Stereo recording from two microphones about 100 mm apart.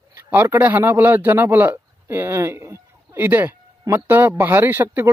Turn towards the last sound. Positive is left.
turn(degrees=-25)  # may be behind; listen again after turning